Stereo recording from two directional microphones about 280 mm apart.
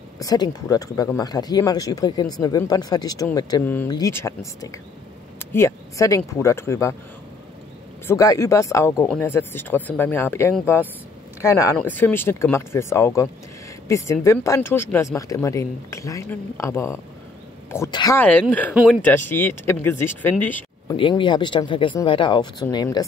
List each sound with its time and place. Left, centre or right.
0.2 s speech: centre
5.5 s speech: centre
8.1 s speech: centre
19.0 s speech: centre
20.9 s speech: centre